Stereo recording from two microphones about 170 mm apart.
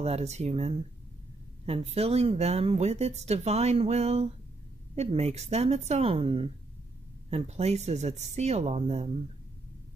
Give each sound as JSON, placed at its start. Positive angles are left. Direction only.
{"t": 0.0, "sound": "speech", "side_deg": -40}